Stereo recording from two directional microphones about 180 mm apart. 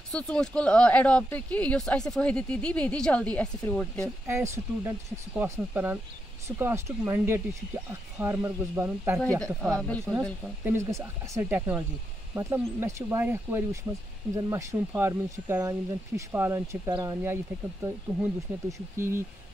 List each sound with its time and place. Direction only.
0.1 s speech: 5° left (ahead or behind)
4.0 s speech: 15° right (ahead or behind)
9.8 s speech: 5° left (ahead or behind)
10.6 s speech: 15° right (ahead or behind)